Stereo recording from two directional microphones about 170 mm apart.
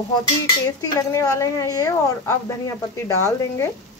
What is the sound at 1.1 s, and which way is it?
A woman's voice, 20° left (ahead or behind).